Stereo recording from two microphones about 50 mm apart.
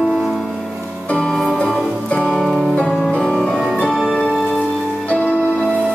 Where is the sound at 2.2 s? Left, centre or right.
Centre.